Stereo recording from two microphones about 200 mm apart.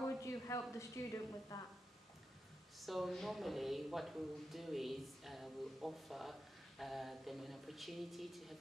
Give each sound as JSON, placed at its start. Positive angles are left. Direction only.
{"t": 0.0, "sound": "a woman's voice", "side_deg": 15}
{"t": 2.8, "sound": "speech", "side_deg": 0}